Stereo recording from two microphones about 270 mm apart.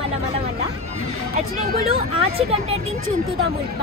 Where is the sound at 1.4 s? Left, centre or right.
Right.